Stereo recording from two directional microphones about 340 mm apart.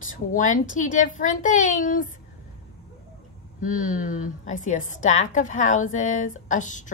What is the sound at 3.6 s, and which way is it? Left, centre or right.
A woman's voice, left.